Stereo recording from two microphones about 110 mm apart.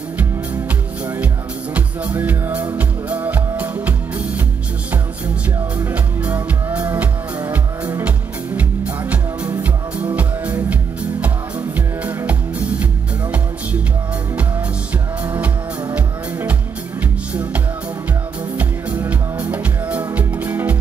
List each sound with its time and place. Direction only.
0.2 s music: 15° right (ahead or behind)
5.8 s music: 15° right (ahead or behind)
15.2 s music: 15° right (ahead or behind)
18.6 s music: 15° right (ahead or behind)